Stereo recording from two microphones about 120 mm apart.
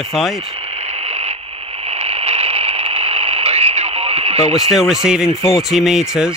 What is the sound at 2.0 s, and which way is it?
Radio, 55° right (ahead or behind).